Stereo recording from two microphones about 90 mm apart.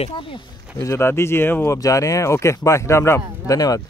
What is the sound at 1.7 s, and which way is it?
Speech, 35° left (ahead or behind).